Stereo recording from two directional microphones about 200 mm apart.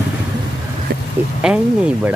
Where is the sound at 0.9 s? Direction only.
50° right (ahead or behind).